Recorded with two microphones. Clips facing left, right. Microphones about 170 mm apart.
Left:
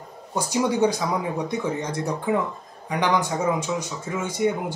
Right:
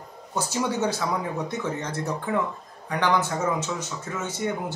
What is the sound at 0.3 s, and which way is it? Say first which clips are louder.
Speech: left 4 dB; 15° left (ahead or behind).